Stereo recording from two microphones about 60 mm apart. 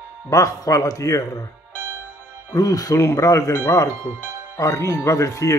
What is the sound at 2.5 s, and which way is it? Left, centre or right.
Speech, left.